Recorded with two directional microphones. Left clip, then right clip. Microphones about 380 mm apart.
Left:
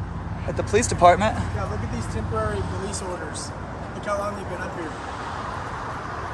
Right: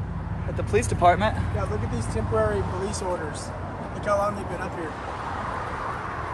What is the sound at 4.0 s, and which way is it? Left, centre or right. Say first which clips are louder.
Speech: right 3 dB; centre.